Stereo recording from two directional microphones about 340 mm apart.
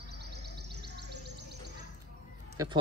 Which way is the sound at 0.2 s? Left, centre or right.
Right.